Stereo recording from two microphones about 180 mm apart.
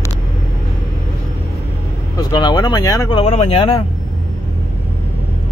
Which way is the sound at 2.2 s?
25° left (ahead or behind).